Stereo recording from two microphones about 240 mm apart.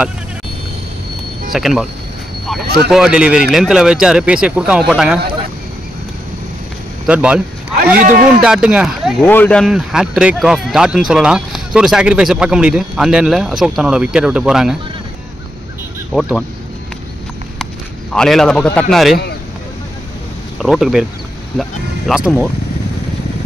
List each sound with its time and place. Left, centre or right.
1.5 s speech: centre
2.9 s speech: centre
7.1 s speech: centre
16.1 s speech: centre
18.1 s speech: centre
20.6 s speech: centre